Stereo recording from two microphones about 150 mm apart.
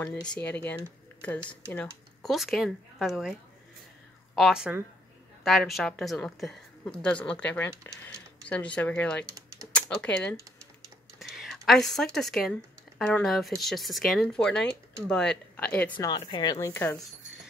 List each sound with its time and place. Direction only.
1.2 s speech: 10° left (ahead or behind)
2.2 s a woman's voice: centre (ahead or behind)
4.4 s a woman's voice: 5° right (ahead or behind)
16.0 s speech: 30° left (ahead or behind)